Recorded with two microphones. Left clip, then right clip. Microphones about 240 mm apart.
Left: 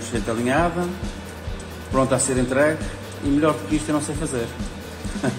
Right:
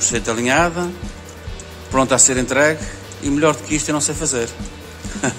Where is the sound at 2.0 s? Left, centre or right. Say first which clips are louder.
Right 5 dB; right.